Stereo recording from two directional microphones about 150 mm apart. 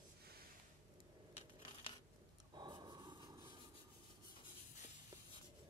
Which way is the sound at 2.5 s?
30° right (ahead or behind).